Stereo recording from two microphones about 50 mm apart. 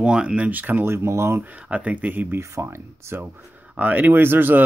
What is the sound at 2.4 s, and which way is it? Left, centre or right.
Speech, right.